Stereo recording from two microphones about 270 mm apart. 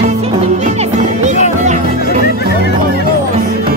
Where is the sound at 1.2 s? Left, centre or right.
Right.